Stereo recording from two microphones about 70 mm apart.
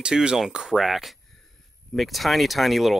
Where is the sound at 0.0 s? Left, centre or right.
Centre.